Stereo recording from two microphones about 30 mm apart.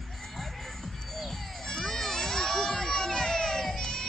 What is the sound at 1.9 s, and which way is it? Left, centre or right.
Crowd, centre.